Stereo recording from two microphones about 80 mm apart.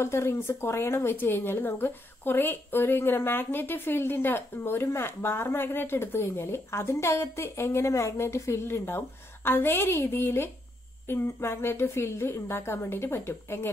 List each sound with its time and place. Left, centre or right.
0.0 s a woman's voice: left